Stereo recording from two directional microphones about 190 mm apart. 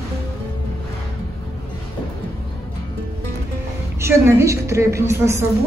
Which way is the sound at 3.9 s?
15° right (ahead or behind).